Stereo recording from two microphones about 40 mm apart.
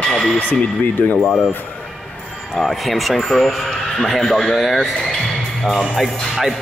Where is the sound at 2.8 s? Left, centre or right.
Centre.